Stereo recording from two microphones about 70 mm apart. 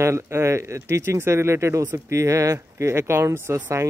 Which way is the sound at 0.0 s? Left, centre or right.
Right.